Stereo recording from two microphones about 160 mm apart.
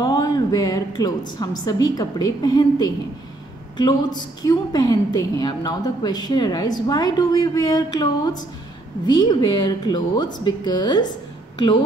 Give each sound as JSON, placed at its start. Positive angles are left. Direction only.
{"t": 0.0, "sound": "a woman's voice", "side_deg": 25}